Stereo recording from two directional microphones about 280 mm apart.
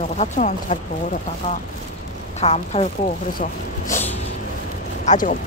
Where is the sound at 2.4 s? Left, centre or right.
Left.